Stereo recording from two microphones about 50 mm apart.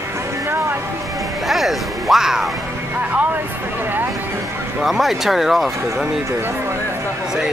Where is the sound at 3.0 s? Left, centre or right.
Right.